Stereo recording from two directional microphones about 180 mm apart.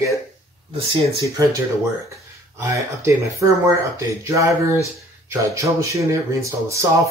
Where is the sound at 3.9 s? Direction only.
15° right (ahead or behind).